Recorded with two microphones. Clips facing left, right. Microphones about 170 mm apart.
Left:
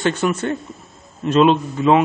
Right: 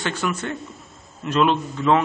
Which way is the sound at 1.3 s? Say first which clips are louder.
Left 5 dB; 20° left (ahead or behind).